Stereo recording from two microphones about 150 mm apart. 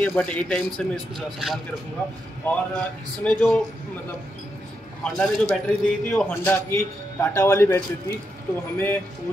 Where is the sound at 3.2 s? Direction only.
10° left (ahead or behind).